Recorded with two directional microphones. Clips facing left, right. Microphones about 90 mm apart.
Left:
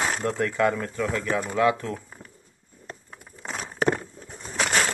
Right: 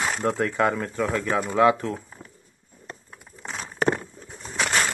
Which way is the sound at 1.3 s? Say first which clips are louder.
Right 4 dB; 25° right (ahead or behind).